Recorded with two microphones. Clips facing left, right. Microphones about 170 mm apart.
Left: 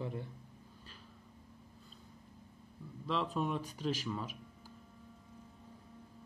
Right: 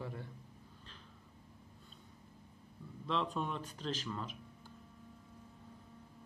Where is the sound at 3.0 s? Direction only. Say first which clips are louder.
Left 2 dB; centre (ahead or behind).